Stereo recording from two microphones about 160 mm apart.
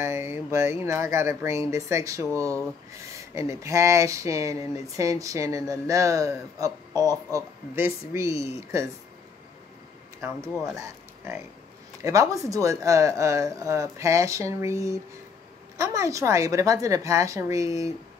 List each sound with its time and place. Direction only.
0.0 s speech: 15° right (ahead or behind)
12.0 s speech: 20° right (ahead or behind)